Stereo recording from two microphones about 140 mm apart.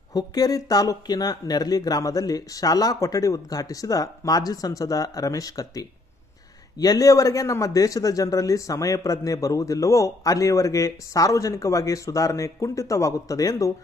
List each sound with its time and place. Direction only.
0.1 s speech: 25° left (ahead or behind)